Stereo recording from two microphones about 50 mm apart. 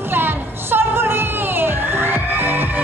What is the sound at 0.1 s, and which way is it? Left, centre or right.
Music, right.